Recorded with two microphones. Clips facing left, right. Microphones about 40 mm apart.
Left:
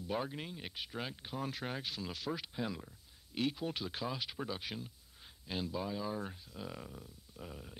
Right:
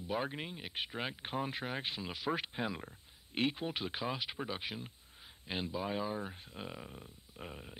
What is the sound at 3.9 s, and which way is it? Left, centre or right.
Speech, right.